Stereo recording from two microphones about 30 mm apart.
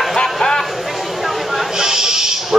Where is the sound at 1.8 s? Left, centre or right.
Centre.